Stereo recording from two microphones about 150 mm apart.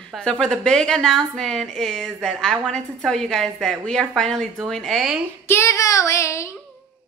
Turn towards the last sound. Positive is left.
turn(degrees=20)  # may be behind; listen again after turning